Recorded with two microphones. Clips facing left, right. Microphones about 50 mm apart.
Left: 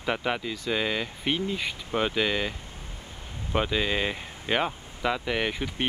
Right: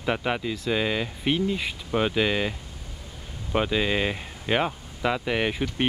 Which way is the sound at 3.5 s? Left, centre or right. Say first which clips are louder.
Right 2 dB; centre.